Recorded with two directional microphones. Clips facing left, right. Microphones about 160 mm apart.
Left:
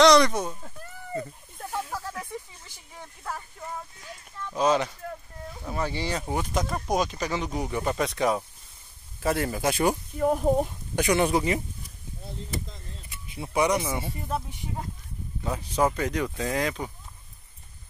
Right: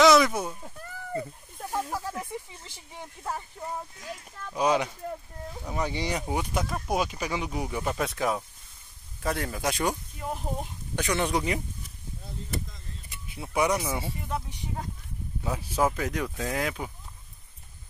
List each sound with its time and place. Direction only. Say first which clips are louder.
0.0 s a sound: left 1 dB; 5° right (ahead or behind); by 3.4 s 20° right (ahead or behind)
4.6 s speech: left 1 dB; 15° right (ahead or behind); by 9.9 s 5° left (ahead or behind)
10.1 s speech: left 11 dB; 50° left (ahead or behind)
11.0 s speech: left 4 dB; 10° left (ahead or behind)
13.4 s speech: left 2 dB; centre (ahead or behind)
15.4 s speech: left 1 dB; 5° right (ahead or behind)